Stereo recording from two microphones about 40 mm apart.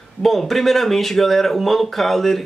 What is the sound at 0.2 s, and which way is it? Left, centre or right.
Speech, centre.